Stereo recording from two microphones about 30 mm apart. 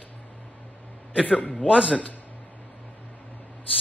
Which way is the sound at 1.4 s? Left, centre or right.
Left.